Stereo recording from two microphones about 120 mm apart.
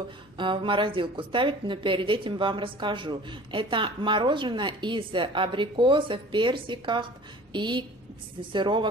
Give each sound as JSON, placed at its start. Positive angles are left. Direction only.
{"t": 0.4, "sound": "speech", "side_deg": -45}